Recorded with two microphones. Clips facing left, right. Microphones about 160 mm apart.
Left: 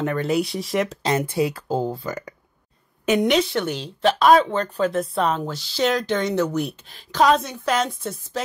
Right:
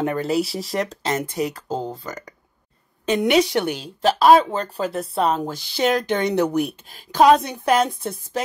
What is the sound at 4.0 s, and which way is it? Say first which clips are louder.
Speech: right 1 dB; 35° right (ahead or behind).